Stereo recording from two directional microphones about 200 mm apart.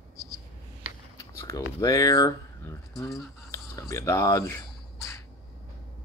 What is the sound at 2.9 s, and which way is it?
Speech, centre (ahead or behind).